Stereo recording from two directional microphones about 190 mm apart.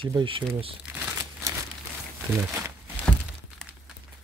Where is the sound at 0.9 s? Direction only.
15° right (ahead or behind).